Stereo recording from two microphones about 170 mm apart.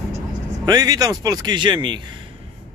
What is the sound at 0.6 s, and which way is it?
Speech, 20° right (ahead or behind).